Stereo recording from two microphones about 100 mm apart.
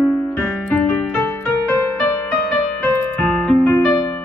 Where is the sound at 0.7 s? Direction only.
15° left (ahead or behind).